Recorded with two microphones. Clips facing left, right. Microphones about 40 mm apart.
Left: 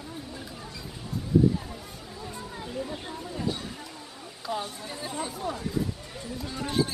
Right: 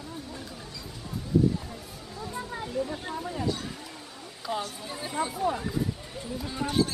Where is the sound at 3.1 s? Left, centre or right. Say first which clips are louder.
Right 4 dB; right.